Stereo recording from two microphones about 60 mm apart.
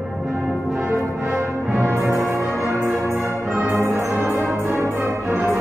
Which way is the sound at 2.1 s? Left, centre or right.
Right.